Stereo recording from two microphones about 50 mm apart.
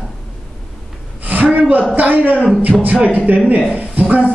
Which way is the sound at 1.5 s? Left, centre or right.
Right.